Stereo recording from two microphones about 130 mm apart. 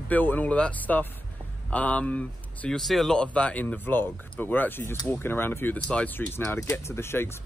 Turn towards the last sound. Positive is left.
turn(degrees=20)  # may be behind; listen again after turning